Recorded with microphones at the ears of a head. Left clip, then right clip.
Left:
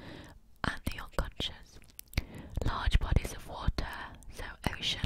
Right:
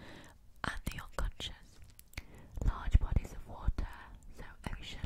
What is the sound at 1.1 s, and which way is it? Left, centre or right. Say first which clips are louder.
Whispering: left 7 dB; left.